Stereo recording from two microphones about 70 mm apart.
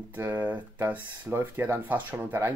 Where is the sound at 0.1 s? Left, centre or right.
Right.